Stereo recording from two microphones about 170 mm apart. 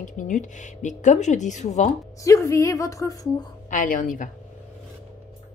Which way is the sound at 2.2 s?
20° left (ahead or behind).